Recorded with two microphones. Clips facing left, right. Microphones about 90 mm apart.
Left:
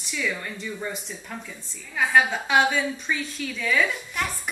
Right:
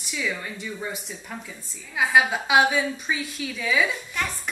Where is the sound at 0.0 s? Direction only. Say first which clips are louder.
Even; 5° right (ahead or behind).